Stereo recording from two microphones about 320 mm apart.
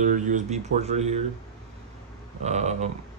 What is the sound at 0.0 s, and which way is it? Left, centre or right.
Speech, right.